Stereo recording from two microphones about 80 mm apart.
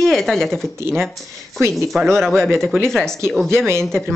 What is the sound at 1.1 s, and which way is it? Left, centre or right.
Speech, right.